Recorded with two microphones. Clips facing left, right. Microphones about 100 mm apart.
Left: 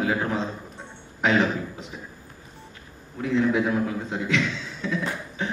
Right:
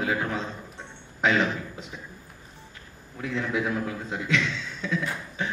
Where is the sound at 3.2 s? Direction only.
35° left (ahead or behind).